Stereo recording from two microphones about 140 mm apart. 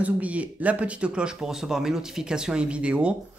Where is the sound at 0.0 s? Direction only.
10° right (ahead or behind).